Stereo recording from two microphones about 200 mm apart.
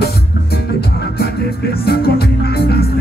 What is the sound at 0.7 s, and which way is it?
Music, 50° left (ahead or behind).